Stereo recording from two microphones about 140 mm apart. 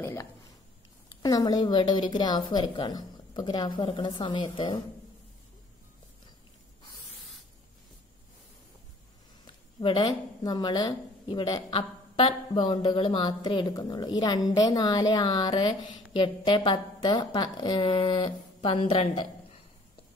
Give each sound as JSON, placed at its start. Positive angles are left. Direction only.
{"t": 0.0, "sound": "a sound", "side_deg": 20}
{"t": 1.2, "sound": "a woman's voice", "side_deg": 30}
{"t": 9.4, "sound": "a woman's voice", "side_deg": 30}